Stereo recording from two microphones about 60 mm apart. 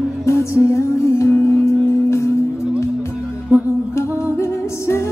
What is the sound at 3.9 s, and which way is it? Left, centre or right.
Music, left.